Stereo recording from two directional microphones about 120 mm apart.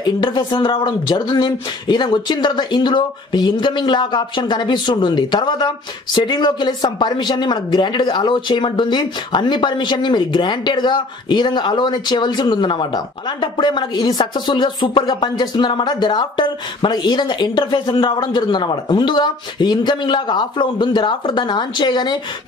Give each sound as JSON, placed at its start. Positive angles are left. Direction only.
{"t": 0.0, "sound": "speech", "side_deg": 40}